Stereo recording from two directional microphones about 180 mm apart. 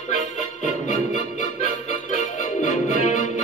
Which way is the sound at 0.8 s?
45° left (ahead or behind).